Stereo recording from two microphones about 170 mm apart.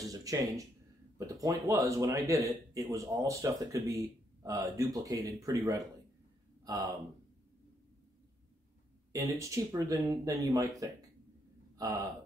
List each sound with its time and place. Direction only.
0.0 s speech: 20° right (ahead or behind)
9.1 s speech: 20° right (ahead or behind)